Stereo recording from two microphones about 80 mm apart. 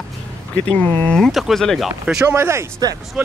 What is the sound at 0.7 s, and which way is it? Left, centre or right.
Speech, centre.